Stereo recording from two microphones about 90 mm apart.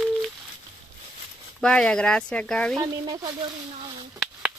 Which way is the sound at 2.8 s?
50° right (ahead or behind).